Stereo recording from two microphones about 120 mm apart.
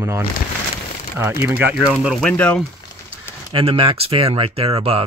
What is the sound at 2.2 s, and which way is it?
Speech, 10° left (ahead or behind).